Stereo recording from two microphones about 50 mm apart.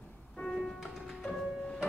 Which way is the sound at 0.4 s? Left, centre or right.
Centre.